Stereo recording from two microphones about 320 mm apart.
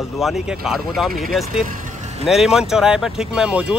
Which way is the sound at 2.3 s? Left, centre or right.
Centre.